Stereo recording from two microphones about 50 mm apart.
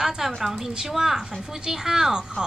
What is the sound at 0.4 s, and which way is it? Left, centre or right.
A woman's voice, centre.